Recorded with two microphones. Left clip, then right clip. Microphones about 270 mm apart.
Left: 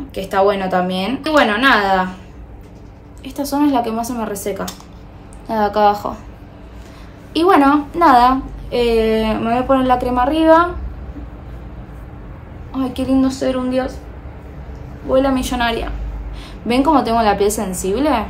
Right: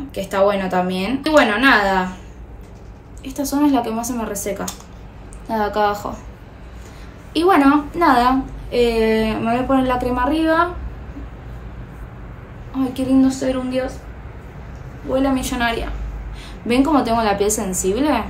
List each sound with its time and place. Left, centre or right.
0.1 s a woman's voice: centre
3.3 s a woman's voice: centre
7.3 s a woman's voice: centre
12.7 s a woman's voice: centre
15.1 s a woman's voice: centre